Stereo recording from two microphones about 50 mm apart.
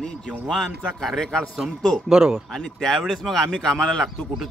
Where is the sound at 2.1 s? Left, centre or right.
Centre.